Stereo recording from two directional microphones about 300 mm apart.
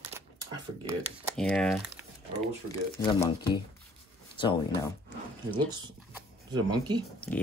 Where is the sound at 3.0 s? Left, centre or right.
Centre.